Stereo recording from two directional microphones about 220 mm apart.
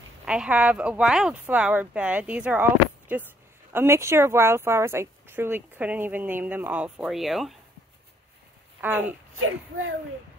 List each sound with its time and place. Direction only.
0.2 s speech: 5° right (ahead or behind)
8.8 s speech: 10° right (ahead or behind)
9.3 s speech: 70° right (ahead or behind)